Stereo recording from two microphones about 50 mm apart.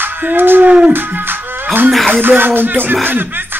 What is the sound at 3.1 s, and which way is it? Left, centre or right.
Speech, right.